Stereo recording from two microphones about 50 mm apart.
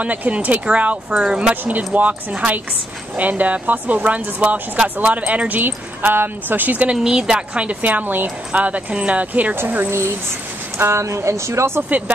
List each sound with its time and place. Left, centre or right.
0.0 s speech: right
1.1 s speech: centre
1.5 s speech: right
5.6 s speech: right
7.0 s speech: centre
7.8 s speech: right
10.8 s speech: right